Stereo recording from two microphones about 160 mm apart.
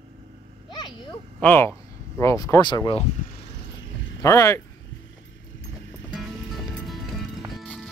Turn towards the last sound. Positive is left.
turn(degrees=0)  # may be behind; listen again after turning